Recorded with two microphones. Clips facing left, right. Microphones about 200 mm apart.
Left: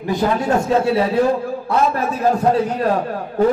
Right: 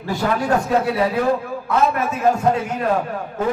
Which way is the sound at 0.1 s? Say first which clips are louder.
Left 2 dB; 25° left (ahead or behind).